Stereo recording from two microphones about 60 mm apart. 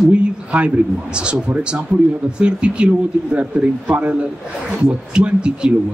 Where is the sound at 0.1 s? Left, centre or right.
Right.